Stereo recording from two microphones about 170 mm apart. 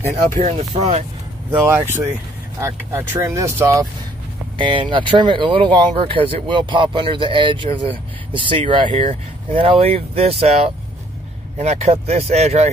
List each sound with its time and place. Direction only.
0.1 s speech: 40° right (ahead or behind)
1.5 s speech: 10° right (ahead or behind)
4.6 s speech: 30° right (ahead or behind)
8.9 s speech: 45° right (ahead or behind)